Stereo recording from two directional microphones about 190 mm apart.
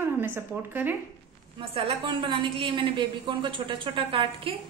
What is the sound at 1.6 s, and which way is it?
A woman's voice, 25° right (ahead or behind).